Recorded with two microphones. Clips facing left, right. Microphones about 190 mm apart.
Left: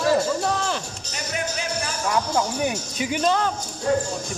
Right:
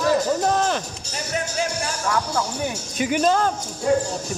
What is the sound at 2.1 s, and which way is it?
Speech, 15° left (ahead or behind).